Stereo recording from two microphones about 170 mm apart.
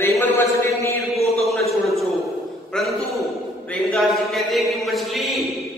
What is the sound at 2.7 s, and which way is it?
A man's voice, 5° left (ahead or behind).